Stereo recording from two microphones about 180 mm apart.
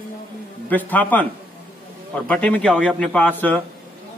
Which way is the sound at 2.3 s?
5° left (ahead or behind).